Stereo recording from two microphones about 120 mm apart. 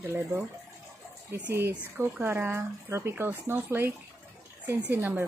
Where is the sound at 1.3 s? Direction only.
15° right (ahead or behind).